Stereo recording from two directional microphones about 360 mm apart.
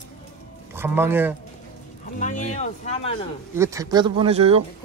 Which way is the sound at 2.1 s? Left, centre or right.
Centre.